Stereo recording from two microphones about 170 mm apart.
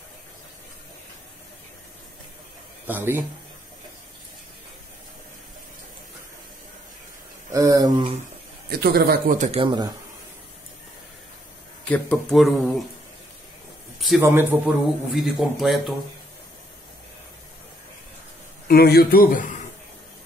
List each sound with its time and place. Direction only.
2.9 s speech: 10° right (ahead or behind)
7.5 s speech: 20° right (ahead or behind)
8.6 s a man's voice: 65° right (ahead or behind)
9.4 s speech: 40° right (ahead or behind)
9.7 s speech: 25° right (ahead or behind)
11.9 s a man's voice: 10° left (ahead or behind)
13.9 s speech: centre (ahead or behind)
14.2 s speech: 15° right (ahead or behind)
15.1 s a man's voice: centre (ahead or behind)
18.7 s a man's voice: 65° left (ahead or behind); by 19.6 s 50° left (ahead or behind)